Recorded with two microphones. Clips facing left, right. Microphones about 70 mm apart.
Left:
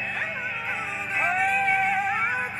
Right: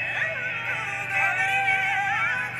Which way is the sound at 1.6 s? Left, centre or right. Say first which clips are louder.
Left 1 dB; left.